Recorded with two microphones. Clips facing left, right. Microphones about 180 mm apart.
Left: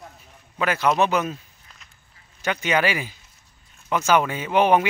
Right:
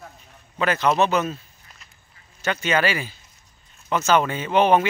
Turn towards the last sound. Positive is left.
turn(degrees=10)  # may be behind; listen again after turning